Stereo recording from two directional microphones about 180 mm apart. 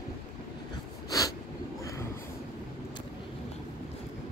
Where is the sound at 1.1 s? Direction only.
20° left (ahead or behind).